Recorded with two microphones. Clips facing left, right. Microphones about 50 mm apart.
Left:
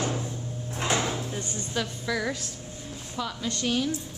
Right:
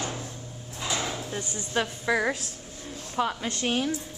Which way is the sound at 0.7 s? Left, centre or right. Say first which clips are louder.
Left 4 dB; left.